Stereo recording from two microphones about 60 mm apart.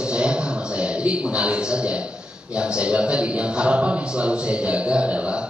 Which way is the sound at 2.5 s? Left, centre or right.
Centre.